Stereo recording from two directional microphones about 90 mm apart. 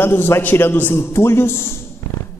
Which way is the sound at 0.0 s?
25° left (ahead or behind).